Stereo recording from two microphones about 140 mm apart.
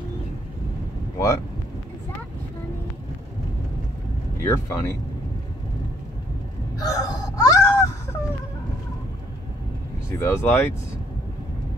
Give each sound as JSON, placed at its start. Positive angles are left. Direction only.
{"t": 1.1, "sound": "speech", "side_deg": 20}
{"t": 4.4, "sound": "speech", "side_deg": 20}
{"t": 6.8, "sound": "wail", "side_deg": 25}
{"t": 10.1, "sound": "speech", "side_deg": 15}